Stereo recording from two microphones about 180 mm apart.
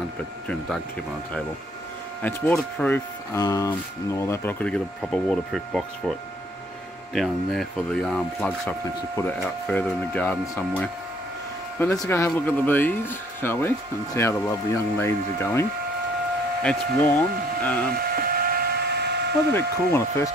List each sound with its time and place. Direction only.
2.2 s speech: 5° left (ahead or behind)
3.3 s speech: 20° left (ahead or behind); by 6.1 s centre (ahead or behind)
7.2 s speech: centre (ahead or behind)
11.8 s speech: 15° left (ahead or behind)
16.6 s speech: 10° left (ahead or behind)
17.9 s electric toothbrush: 55° right (ahead or behind)
19.5 s speech: 15° left (ahead or behind)